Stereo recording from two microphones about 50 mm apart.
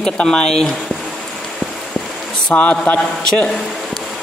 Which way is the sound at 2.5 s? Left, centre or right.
Left.